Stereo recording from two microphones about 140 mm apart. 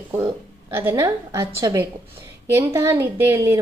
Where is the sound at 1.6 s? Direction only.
25° right (ahead or behind).